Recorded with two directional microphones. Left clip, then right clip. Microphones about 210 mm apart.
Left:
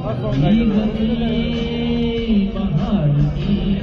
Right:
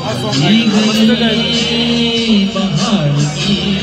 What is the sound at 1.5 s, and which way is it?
Music, 25° right (ahead or behind).